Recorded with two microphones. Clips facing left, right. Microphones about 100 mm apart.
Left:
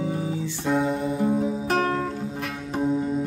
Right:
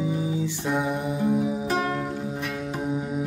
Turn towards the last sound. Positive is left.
turn(degrees=-15)  # may be behind; listen again after turning